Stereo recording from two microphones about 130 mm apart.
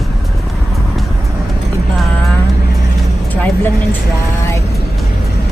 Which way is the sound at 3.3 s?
10° left (ahead or behind).